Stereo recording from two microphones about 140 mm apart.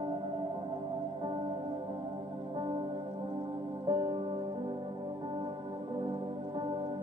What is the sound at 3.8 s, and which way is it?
Music, 30° right (ahead or behind).